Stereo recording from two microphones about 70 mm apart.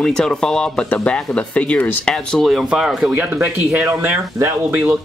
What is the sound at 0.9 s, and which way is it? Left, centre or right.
Speech, centre.